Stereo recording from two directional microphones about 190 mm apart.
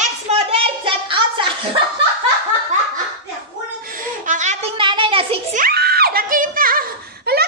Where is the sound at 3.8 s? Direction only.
45° right (ahead or behind); by 5.4 s 30° right (ahead or behind).